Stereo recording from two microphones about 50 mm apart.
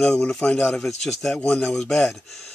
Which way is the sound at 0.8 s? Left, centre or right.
Centre.